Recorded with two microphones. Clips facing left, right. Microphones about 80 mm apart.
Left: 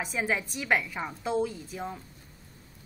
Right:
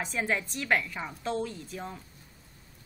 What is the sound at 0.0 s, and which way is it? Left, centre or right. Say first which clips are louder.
A woman's voice: left 1 dB; centre.